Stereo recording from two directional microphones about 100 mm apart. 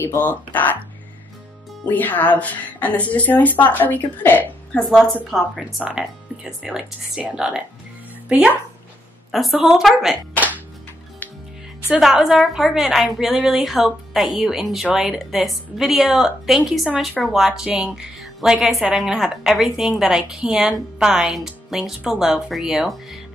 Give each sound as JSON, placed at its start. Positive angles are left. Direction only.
{"t": 0.0, "sound": "speech", "side_deg": 25}
{"t": 0.3, "sound": "a woman's voice", "side_deg": 15}
{"t": 1.9, "sound": "a woman's voice", "side_deg": 15}
{"t": 4.7, "sound": "a woman's voice", "side_deg": 5}
{"t": 11.9, "sound": "a woman's voice", "side_deg": -5}